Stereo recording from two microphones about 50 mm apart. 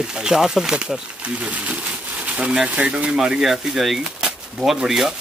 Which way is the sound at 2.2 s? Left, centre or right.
Centre.